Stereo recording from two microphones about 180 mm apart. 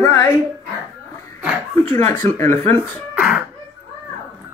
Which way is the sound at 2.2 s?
15° left (ahead or behind).